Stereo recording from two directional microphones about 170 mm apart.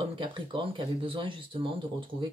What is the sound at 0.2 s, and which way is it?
Speech, 30° right (ahead or behind).